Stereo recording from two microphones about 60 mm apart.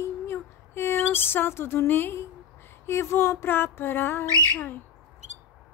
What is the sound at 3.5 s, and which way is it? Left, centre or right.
Female singing, left.